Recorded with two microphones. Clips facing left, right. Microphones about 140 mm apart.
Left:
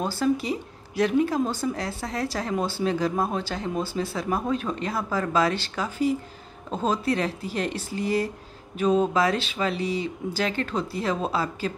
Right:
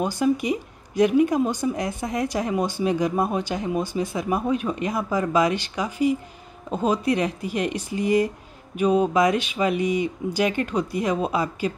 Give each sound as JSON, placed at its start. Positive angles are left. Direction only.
{"t": 0.0, "sound": "speech", "side_deg": -15}